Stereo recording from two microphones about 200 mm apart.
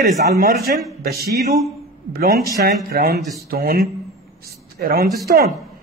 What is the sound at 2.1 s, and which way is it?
A man's voice, 50° right (ahead or behind).